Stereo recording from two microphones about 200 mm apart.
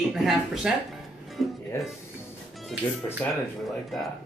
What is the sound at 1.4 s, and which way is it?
Music, centre (ahead or behind).